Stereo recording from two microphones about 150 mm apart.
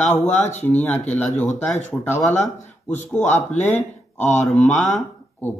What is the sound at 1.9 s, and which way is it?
Speech, 15° left (ahead or behind).